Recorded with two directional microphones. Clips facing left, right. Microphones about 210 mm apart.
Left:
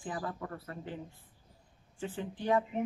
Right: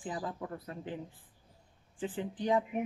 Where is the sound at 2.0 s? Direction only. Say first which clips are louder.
Right 2 dB; 15° right (ahead or behind).